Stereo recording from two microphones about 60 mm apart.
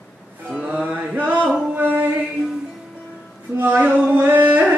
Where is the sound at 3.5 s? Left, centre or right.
Right.